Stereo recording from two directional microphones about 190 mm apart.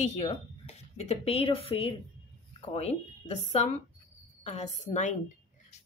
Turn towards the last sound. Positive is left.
turn(degrees=35)  # may be behind; listen again after turning